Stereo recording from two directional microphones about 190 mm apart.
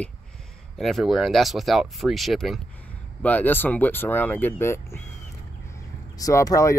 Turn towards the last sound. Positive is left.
turn(degrees=15)  # may be behind; listen again after turning